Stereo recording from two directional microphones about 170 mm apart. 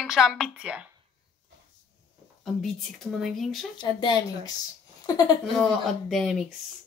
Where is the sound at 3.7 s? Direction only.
25° left (ahead or behind).